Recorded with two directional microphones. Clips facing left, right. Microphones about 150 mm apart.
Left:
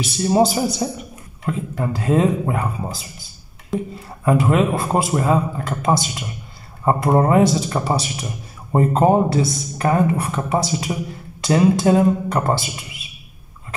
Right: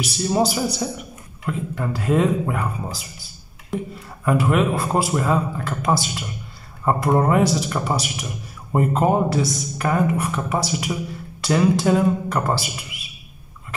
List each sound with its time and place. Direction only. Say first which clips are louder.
0.0 s speech: left 4 dB; 25° left (ahead or behind)
4.2 s speech: left 2 dB; 25° left (ahead or behind)